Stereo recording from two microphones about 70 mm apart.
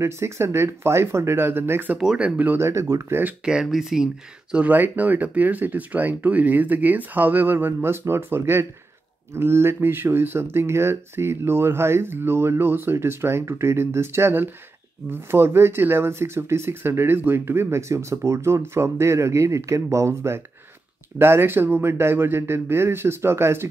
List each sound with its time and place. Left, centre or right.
0.0 s speech: right
2.0 s speech: centre
2.6 s speech: right
3.4 s speech: centre; by 23.7 s right